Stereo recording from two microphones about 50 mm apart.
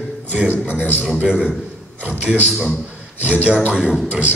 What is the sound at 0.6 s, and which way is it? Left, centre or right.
Speech, left.